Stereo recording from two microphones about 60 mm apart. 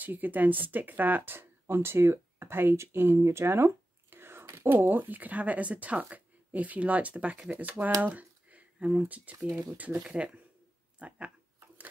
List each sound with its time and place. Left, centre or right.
0.0 s speech: right